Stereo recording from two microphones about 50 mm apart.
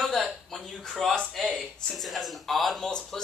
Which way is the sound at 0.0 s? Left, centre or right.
Centre.